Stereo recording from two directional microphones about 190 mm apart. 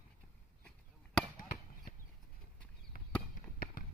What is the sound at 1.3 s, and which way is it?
Chop, 45° left (ahead or behind).